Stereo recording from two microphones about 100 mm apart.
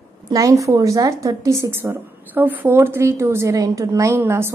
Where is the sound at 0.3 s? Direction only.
35° right (ahead or behind).